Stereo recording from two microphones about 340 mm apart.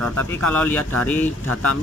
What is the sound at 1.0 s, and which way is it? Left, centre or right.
Speech, centre.